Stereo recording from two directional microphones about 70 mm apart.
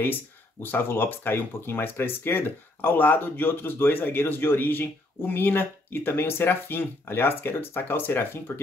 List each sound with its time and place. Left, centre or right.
0.0 s speech: left